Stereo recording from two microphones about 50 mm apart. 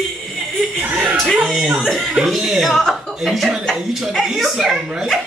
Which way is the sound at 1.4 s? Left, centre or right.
Centre.